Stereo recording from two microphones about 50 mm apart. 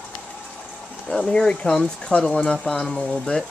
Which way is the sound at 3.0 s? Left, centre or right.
Left.